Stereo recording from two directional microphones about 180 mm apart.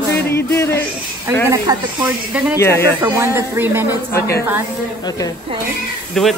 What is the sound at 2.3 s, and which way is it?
Speech, 5° right (ahead or behind).